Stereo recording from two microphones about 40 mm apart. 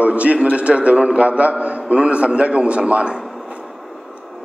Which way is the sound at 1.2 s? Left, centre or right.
Right.